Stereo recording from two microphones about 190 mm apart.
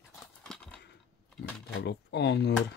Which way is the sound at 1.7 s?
60° left (ahead or behind).